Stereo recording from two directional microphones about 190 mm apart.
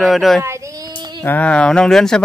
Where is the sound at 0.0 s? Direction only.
Centre (ahead or behind).